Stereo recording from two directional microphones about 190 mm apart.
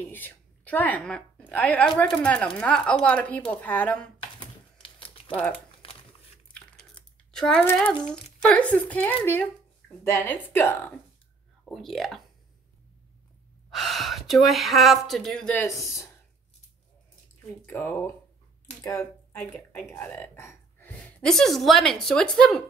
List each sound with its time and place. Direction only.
0.0 s speech: 10° left (ahead or behind)
4.4 s typewriter: 25° left (ahead or behind)
5.3 s speech: 10° left (ahead or behind)
7.3 s speech: 5° left (ahead or behind)
11.6 s speech: centre (ahead or behind)
13.7 s speech: centre (ahead or behind)
17.6 s speech: 10° left (ahead or behind)